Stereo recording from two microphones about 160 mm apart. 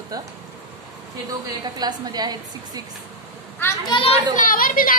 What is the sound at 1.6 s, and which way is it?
A woman's voice, 25° right (ahead or behind).